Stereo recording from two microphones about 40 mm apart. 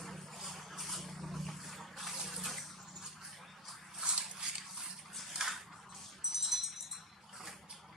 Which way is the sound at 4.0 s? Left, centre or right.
Right.